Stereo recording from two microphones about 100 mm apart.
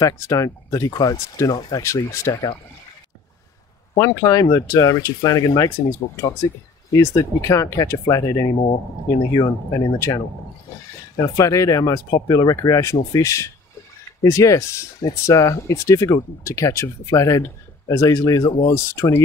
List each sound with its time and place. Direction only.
0.0 s speech: 35° left (ahead or behind)
3.9 s speech: 35° left (ahead or behind)